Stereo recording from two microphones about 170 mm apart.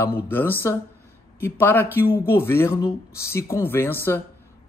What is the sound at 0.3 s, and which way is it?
Speech, 10° left (ahead or behind).